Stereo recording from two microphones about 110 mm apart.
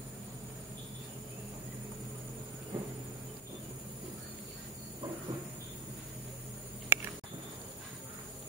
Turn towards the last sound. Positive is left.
turn(degrees=-20)  # may be behind; listen again after turning